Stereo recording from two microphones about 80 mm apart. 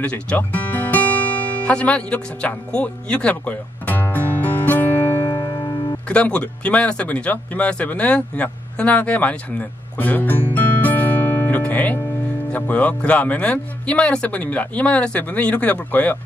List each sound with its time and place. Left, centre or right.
0.0 s speech: centre
4.3 s music: left
5.2 s music: left
6.0 s speech: centre
10.5 s music: centre
12.5 s speech: centre